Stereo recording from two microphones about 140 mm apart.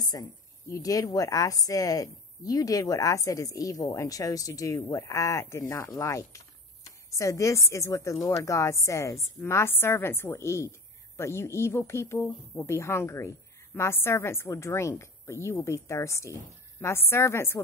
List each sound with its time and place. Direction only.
0.0 s a woman's voice: 30° left (ahead or behind)